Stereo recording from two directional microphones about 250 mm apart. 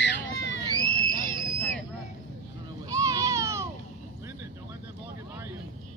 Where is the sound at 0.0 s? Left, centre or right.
Left.